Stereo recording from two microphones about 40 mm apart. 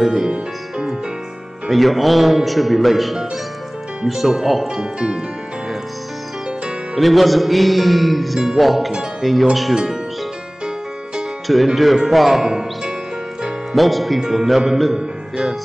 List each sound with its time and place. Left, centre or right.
0.0 s speech: centre
1.7 s music: centre
7.0 s music: centre
11.4 s music: centre
12.4 s music: centre
13.7 s music: centre
14.2 s speech: centre